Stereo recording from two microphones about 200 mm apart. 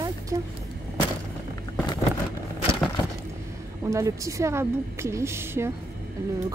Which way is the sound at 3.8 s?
15° right (ahead or behind).